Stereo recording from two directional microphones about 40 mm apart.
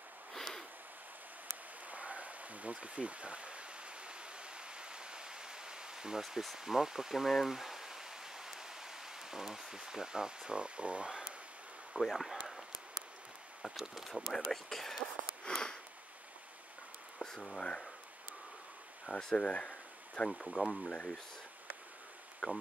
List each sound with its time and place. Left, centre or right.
0.3 s a sound: centre
1.9 s a sound: right; by 6.2 s centre
6.2 s speech: centre; by 11.3 s right
12.0 s speech: centre
13.6 s speech: centre
15.5 s sniff: left
17.2 s speech: centre
19.0 s speech: centre
22.4 s speech: left